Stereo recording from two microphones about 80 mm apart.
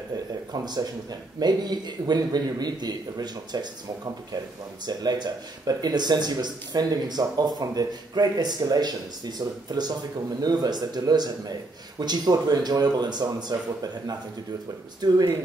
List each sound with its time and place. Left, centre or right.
0.5 s speech: right
4.8 s speech: right
15.0 s speech: right